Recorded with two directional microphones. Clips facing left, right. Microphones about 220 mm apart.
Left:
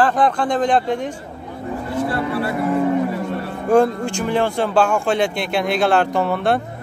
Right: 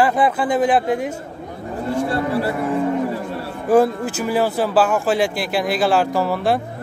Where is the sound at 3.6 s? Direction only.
5° right (ahead or behind).